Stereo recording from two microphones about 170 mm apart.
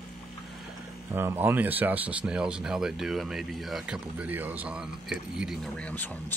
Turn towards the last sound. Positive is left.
turn(degrees=5)  # may be behind; listen again after turning